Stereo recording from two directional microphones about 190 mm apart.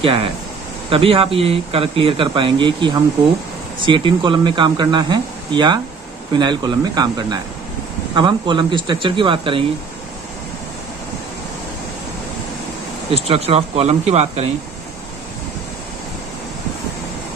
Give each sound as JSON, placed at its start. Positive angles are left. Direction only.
{"t": 0.0, "sound": "speech", "side_deg": -30}
{"t": 13.1, "sound": "speech", "side_deg": -30}